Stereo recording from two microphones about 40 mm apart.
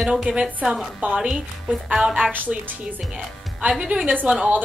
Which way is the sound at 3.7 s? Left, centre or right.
Centre.